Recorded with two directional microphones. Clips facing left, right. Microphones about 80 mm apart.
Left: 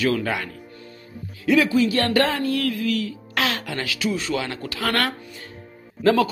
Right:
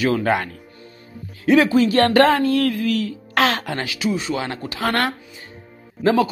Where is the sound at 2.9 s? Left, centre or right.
Right.